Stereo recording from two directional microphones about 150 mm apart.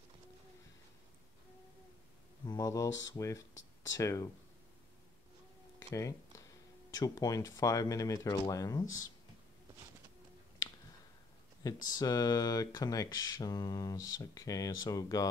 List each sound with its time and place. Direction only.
2.4 s speech: 25° left (ahead or behind)
5.9 s a sound: 20° left (ahead or behind)
6.9 s speech: 25° left (ahead or behind)
11.6 s speech: 25° left (ahead or behind)